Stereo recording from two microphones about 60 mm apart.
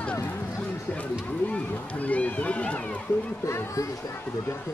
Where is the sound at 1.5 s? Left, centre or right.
Left.